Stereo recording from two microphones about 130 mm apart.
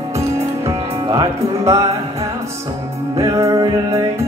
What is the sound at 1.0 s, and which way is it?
Music, 40° right (ahead or behind).